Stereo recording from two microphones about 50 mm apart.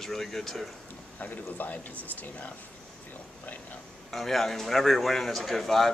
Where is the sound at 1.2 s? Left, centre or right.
Left.